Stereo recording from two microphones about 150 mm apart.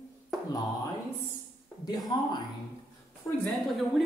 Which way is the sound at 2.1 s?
30° left (ahead or behind).